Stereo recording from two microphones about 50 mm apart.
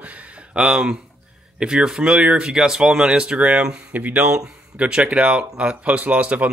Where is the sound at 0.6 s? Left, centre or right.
Centre.